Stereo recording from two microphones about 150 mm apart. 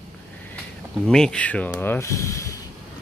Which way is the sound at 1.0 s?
5° left (ahead or behind).